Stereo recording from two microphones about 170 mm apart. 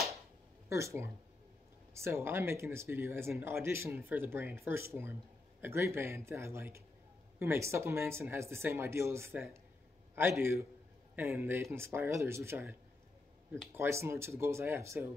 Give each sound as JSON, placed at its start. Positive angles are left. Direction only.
{"t": 0.7, "sound": "speech", "side_deg": -15}
{"t": 13.7, "sound": "speech", "side_deg": -15}